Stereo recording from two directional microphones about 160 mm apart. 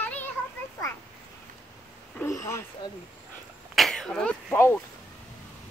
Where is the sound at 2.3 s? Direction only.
20° left (ahead or behind).